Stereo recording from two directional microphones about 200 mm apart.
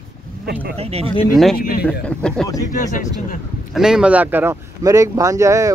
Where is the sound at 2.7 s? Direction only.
40° left (ahead or behind).